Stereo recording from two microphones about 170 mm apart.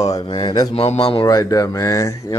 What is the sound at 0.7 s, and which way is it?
Speech, 35° left (ahead or behind).